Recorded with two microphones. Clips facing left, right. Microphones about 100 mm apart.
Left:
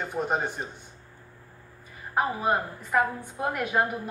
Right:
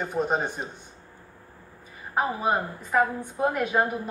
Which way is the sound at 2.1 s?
15° right (ahead or behind).